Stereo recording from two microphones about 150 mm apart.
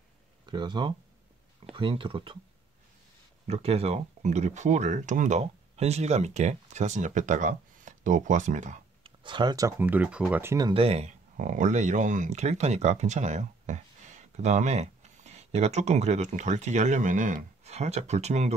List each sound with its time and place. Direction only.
0.5 s speech: 30° right (ahead or behind)
3.4 s speech: 45° right (ahead or behind)
9.0 s speech: 30° right (ahead or behind)
10.7 s speech: 40° right (ahead or behind)